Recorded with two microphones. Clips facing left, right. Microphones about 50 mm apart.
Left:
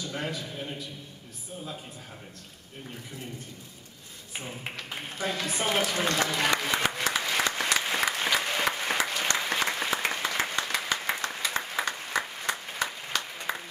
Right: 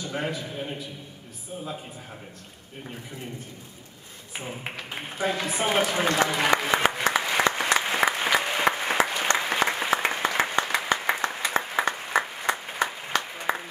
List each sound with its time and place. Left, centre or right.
0.0 s a man's voice: centre
4.4 s a man's voice: centre
7.8 s applause: centre